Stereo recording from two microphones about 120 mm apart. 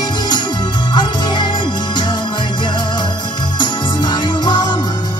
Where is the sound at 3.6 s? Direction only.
35° left (ahead or behind).